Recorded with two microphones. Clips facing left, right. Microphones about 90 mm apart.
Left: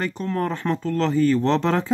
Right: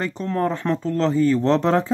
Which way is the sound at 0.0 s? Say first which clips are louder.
Right 2 dB; 30° right (ahead or behind).